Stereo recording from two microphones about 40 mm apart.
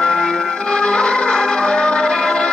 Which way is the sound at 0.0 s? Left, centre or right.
Centre.